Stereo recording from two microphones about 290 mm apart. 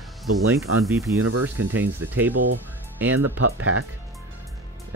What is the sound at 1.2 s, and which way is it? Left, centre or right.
Speech, right.